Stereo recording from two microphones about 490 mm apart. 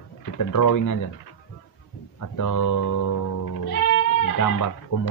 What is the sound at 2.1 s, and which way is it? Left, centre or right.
Speech, left.